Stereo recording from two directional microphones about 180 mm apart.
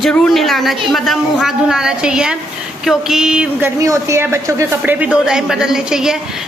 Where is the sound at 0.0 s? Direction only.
5° left (ahead or behind).